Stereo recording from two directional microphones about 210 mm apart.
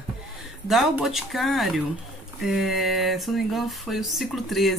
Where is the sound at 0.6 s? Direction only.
Centre (ahead or behind).